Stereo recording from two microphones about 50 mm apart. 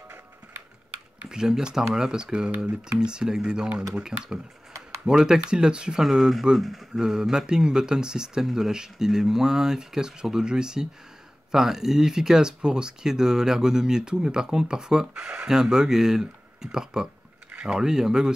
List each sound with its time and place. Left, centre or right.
1.3 s speech: centre
6.9 s speech: centre